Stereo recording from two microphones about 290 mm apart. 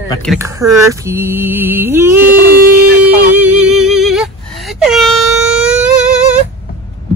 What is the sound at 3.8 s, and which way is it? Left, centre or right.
Air horn, centre.